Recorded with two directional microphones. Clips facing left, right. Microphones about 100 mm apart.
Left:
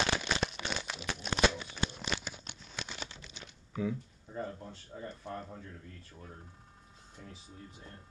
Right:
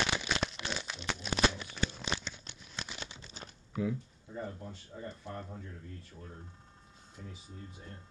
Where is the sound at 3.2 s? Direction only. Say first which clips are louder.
Right 2 dB; 40° right (ahead or behind).